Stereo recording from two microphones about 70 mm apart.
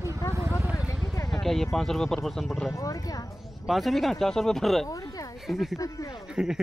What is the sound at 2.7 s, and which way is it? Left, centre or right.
Speech, left.